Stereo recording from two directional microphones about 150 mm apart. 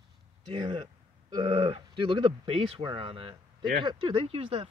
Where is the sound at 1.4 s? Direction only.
40° right (ahead or behind).